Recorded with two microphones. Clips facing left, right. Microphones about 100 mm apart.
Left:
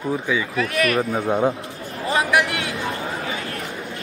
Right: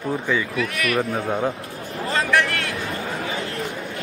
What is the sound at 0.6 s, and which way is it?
Speech, 35° left (ahead or behind).